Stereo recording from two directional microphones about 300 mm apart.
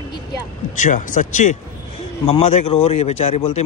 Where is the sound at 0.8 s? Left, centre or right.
Left.